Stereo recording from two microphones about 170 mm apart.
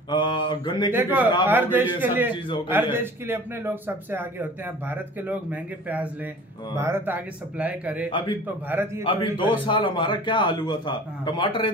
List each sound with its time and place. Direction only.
0.1 s mantra: 25° left (ahead or behind)
0.9 s a man's voice: 10° right (ahead or behind)
9.0 s a man's voice: 30° left (ahead or behind)